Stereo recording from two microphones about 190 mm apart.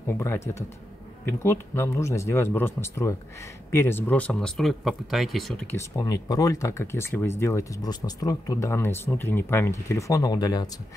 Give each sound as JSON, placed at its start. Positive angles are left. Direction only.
{"t": 0.1, "sound": "speech", "side_deg": 15}
{"t": 5.8, "sound": "speech", "side_deg": 15}